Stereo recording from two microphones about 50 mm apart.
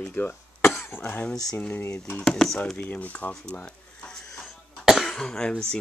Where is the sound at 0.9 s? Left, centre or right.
Left.